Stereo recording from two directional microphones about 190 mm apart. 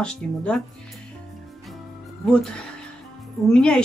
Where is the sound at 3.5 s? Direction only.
5° left (ahead or behind).